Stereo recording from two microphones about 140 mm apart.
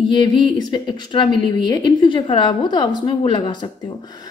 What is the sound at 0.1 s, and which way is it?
A woman's voice, 35° left (ahead or behind).